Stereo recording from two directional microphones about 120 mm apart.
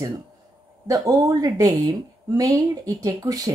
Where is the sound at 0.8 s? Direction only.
30° right (ahead or behind).